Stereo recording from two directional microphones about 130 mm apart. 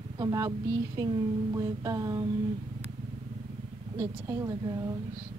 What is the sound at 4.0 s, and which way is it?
Speech, 25° right (ahead or behind).